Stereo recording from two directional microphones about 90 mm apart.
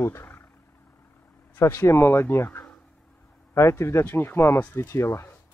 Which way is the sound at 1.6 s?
35° left (ahead or behind).